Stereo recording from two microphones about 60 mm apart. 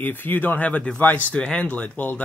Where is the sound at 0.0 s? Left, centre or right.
Left.